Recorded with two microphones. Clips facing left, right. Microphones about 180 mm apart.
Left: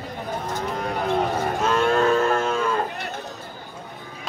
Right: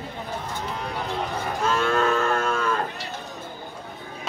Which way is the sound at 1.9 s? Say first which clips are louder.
Left 3 dB; 30° left (ahead or behind).